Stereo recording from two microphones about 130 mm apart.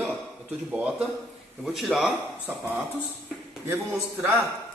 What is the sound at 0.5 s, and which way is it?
A man's voice, 10° right (ahead or behind).